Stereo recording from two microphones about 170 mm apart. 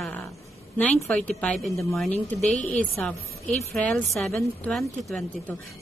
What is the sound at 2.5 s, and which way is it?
Speech, 45° left (ahead or behind).